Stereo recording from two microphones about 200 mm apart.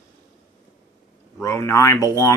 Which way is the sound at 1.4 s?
15° left (ahead or behind).